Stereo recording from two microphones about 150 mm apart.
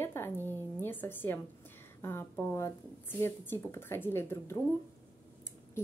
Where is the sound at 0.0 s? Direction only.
15° left (ahead or behind).